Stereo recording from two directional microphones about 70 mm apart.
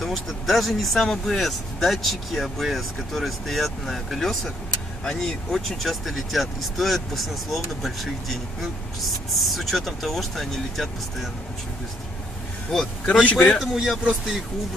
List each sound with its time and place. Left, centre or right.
0.0 s speech: centre
13.2 s a man's voice: centre
13.6 s speech: centre